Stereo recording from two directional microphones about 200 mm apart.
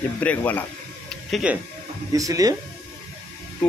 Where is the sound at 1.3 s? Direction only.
5° right (ahead or behind).